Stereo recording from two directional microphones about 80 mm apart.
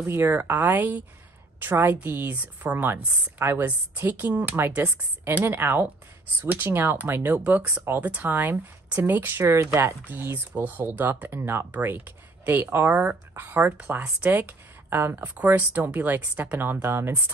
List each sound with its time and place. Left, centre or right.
0.0 s speech: right